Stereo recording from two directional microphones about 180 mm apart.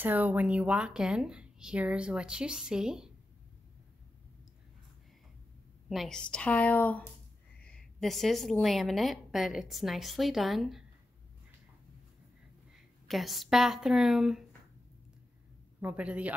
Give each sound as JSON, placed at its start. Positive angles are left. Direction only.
{"t": 0.0, "sound": "a woman's voice", "side_deg": -10}
{"t": 5.9, "sound": "a woman's voice", "side_deg": 0}
{"t": 12.7, "sound": "speech", "side_deg": 0}
{"t": 15.8, "sound": "a man's voice", "side_deg": -5}